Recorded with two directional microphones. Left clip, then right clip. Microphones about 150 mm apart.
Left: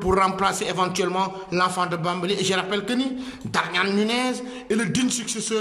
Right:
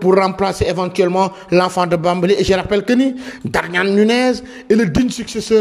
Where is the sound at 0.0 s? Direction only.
35° right (ahead or behind).